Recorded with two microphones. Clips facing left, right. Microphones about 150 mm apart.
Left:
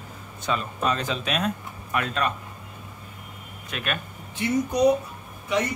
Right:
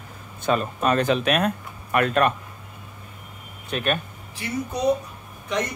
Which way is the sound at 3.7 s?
35° right (ahead or behind).